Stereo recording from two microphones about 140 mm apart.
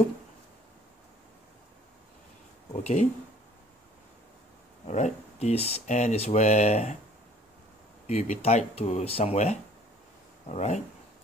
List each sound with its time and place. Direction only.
2.7 s speech: 50° left (ahead or behind)
4.8 s speech: 55° left (ahead or behind)
8.1 s speech: 50° left (ahead or behind)